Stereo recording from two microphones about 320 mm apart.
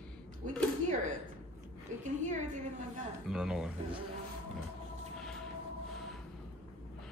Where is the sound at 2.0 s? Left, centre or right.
Right.